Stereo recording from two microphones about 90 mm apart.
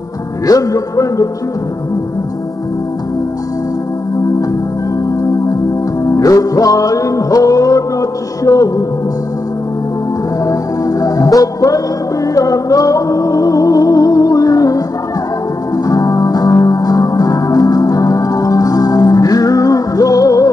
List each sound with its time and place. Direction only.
0.5 s a man's voice: 40° left (ahead or behind)
6.0 s music: 40° left (ahead or behind)
10.4 s music: 40° left (ahead or behind)